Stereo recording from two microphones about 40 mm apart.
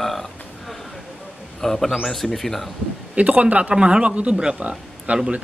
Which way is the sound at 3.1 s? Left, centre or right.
Right.